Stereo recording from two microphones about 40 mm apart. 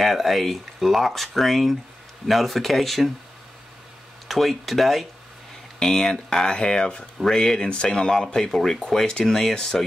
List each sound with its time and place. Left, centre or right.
0.0 s speech: centre
4.3 s speech: centre
5.8 s speech: centre